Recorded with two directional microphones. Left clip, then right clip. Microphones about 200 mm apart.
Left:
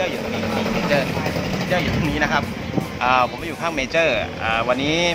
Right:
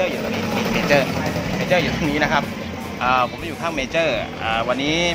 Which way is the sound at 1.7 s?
30° right (ahead or behind).